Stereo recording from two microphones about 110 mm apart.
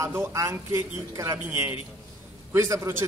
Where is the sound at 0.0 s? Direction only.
25° right (ahead or behind).